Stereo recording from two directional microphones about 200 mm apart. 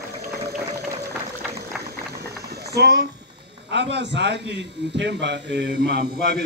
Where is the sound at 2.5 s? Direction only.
55° right (ahead or behind).